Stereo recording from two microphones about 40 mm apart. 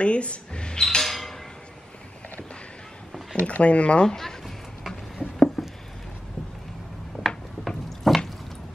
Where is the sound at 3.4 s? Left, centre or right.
Left.